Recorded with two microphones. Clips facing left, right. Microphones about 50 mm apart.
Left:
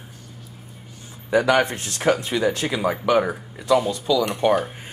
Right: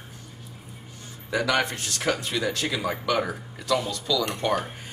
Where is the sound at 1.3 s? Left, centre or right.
Left.